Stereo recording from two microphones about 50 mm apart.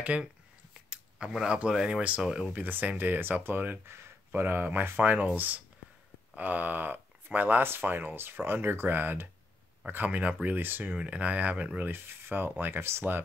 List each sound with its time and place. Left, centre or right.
0.0 s speech: right
1.1 s speech: centre
2.5 s speech: right
7.6 s speech: right
11.0 s speech: right
11.9 s speech: right